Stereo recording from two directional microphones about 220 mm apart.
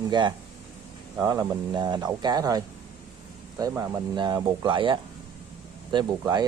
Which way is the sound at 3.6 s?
15° right (ahead or behind).